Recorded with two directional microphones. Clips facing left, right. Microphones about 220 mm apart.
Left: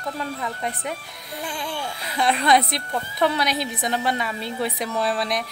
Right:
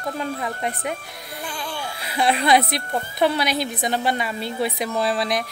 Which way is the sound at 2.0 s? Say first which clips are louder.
Right 1 dB; 10° right (ahead or behind).